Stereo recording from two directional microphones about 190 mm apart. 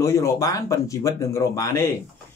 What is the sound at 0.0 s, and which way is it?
Speech, 15° left (ahead or behind).